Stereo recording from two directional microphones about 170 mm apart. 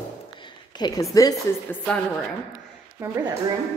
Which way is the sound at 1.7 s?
10° left (ahead or behind).